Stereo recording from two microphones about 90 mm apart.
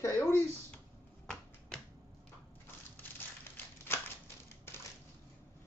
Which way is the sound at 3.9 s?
25° left (ahead or behind).